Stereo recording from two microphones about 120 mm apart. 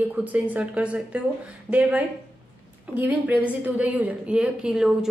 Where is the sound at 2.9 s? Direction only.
10° right (ahead or behind).